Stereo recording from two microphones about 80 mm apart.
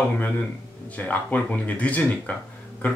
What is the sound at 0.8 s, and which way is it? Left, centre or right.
Speech, centre.